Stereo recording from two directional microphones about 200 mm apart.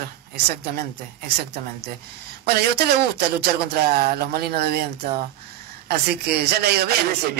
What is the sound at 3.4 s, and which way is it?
Speech, 50° right (ahead or behind).